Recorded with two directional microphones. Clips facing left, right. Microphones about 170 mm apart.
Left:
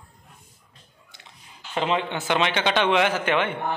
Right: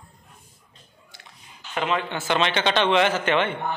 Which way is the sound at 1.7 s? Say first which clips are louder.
Left 1 dB; 25° left (ahead or behind).